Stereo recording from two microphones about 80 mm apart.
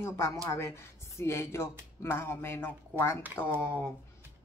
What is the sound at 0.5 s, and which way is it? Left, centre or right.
Speech, left.